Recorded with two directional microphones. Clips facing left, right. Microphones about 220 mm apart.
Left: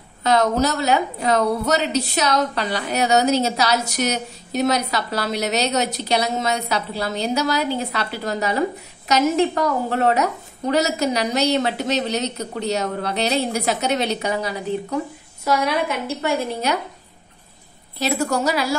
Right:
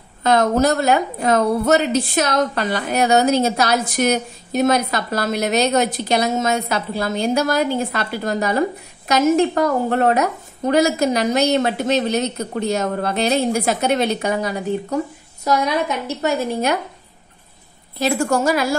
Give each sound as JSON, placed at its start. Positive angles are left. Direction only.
{"t": 0.2, "sound": "a woman's voice", "side_deg": -50}
{"t": 16.2, "sound": "a woman's voice", "side_deg": -45}
{"t": 17.9, "sound": "a woman's voice", "side_deg": -50}